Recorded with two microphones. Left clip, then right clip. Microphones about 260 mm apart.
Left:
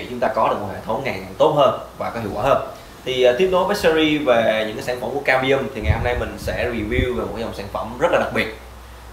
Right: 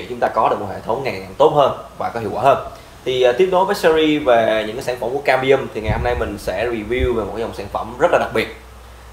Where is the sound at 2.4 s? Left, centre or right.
Right.